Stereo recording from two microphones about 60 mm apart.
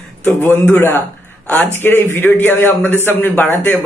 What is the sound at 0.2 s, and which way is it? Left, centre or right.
A man's voice, left.